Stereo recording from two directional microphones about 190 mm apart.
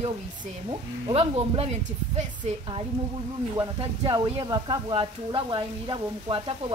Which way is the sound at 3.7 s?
25° right (ahead or behind).